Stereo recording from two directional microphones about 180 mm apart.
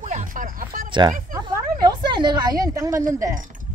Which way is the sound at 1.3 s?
20° right (ahead or behind).